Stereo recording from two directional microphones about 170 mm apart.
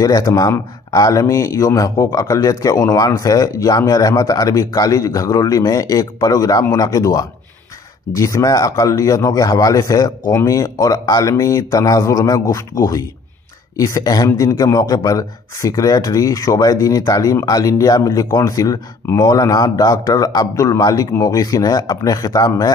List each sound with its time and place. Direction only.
0.0 s speech: 20° left (ahead or behind)